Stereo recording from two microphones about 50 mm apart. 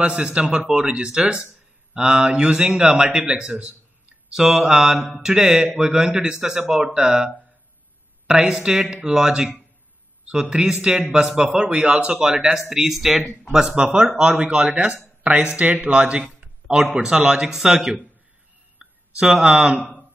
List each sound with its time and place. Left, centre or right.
0.0 s speech: right